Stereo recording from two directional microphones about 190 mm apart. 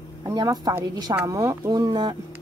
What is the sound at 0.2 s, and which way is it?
A woman's voice, 20° right (ahead or behind).